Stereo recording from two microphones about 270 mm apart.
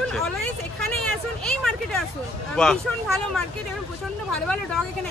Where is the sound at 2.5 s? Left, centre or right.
Centre.